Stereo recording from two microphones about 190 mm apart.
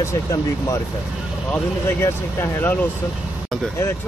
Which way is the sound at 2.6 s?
10° left (ahead or behind).